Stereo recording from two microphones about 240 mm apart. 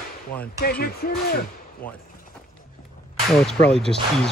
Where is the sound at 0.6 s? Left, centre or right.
Left.